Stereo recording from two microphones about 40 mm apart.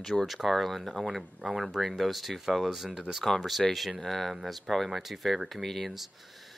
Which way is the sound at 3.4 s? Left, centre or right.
Centre.